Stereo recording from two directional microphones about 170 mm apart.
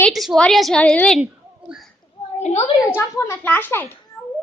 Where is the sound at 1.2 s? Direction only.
5° right (ahead or behind).